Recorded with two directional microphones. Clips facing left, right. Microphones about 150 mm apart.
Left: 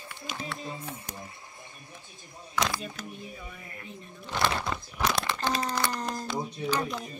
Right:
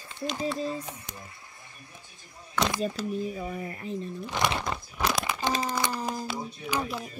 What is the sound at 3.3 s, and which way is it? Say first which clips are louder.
Speech: right 10 dB; 35° right (ahead or behind).